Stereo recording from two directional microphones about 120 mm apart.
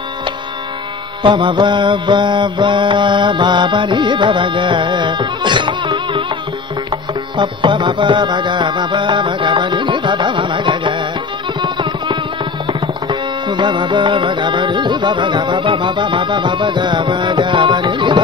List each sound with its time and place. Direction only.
1.2 s mantra: 40° right (ahead or behind)
7.3 s music: 40° right (ahead or behind)
12.6 s tabla: 45° right (ahead or behind)